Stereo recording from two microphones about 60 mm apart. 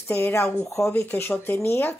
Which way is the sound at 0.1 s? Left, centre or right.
Left.